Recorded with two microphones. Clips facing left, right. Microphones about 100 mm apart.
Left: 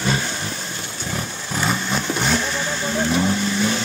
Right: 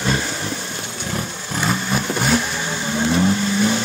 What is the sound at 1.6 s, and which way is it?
Vehicle, 5° right (ahead or behind).